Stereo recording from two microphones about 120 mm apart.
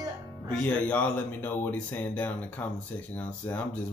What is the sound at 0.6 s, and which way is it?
Speech, 15° left (ahead or behind).